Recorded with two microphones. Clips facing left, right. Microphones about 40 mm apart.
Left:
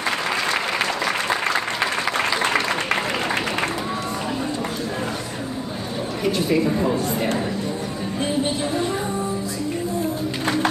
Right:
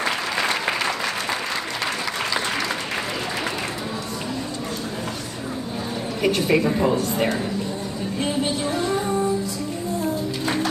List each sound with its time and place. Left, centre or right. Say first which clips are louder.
2.1 s applause: left 6 dB; left
6.2 s speech: right 1 dB; right